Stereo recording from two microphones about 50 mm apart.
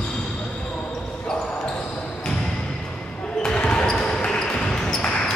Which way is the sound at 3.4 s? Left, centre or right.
Centre.